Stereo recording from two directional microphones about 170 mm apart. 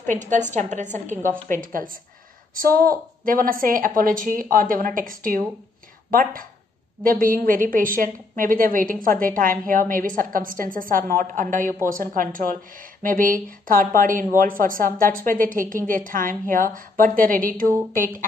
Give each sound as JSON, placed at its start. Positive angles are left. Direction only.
{"t": 0.1, "sound": "a woman's voice", "side_deg": -45}
{"t": 3.3, "sound": "a woman's voice", "side_deg": -55}